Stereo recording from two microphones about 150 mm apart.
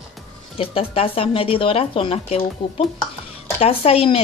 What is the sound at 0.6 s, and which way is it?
Speech, 40° left (ahead or behind).